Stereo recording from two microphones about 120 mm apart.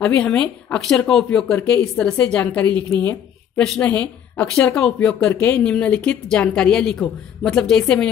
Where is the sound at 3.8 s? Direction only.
15° left (ahead or behind).